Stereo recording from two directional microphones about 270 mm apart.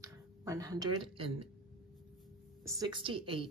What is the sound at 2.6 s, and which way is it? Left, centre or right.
Speech, centre.